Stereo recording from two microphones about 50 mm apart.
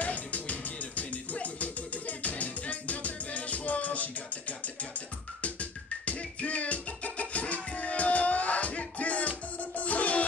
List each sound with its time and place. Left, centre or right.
0.0 s music: left